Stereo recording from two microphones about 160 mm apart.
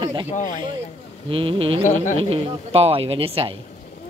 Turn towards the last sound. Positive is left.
turn(degrees=-35)  # may be behind; listen again after turning